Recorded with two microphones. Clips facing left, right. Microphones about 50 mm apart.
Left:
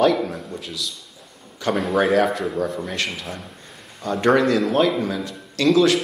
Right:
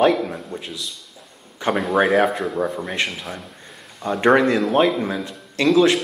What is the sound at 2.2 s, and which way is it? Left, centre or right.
A man's voice, centre.